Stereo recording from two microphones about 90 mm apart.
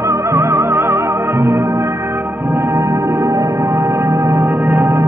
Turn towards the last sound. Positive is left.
turn(degrees=0)  # may be behind; listen again after turning